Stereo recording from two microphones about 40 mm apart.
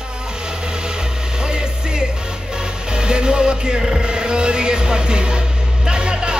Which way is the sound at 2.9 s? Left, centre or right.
Right.